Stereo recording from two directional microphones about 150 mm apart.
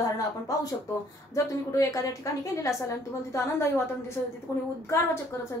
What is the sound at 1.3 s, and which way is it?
A woman's voice, 20° left (ahead or behind).